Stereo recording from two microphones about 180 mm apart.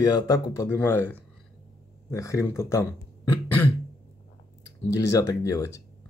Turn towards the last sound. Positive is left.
turn(degrees=15)  # may be behind; listen again after turning